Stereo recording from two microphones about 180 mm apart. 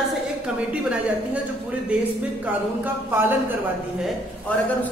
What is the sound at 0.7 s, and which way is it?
A woman's voice, 5° right (ahead or behind).